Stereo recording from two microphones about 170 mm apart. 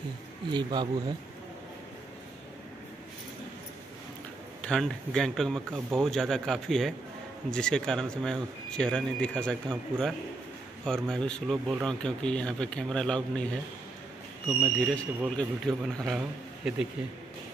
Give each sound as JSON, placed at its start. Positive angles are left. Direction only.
{"t": 0.5, "sound": "speech", "side_deg": -25}
{"t": 4.6, "sound": "speech", "side_deg": 5}
{"t": 14.6, "sound": "speech", "side_deg": 5}